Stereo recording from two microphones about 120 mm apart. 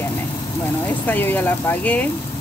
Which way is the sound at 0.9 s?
15° left (ahead or behind).